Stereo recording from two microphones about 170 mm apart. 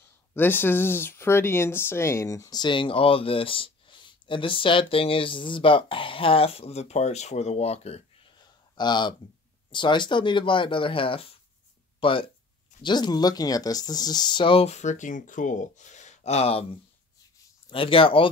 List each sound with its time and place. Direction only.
0.3 s speech: 10° left (ahead or behind); by 8.0 s 35° left (ahead or behind)
8.7 s speech: 25° left (ahead or behind)
17.6 s speech: 30° left (ahead or behind)